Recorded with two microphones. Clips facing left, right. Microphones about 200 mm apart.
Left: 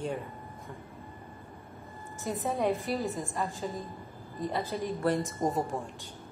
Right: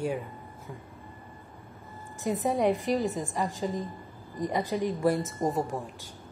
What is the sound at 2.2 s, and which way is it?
Speech, 15° right (ahead or behind).